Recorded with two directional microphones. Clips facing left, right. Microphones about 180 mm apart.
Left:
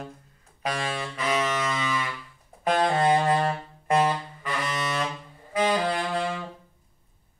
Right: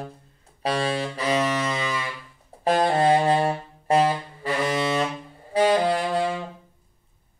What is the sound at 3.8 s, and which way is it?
Saxophone, 35° right (ahead or behind).